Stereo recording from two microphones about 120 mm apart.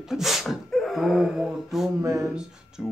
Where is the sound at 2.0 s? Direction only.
25° right (ahead or behind).